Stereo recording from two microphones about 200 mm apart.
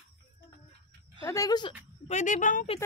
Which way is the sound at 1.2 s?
15° left (ahead or behind).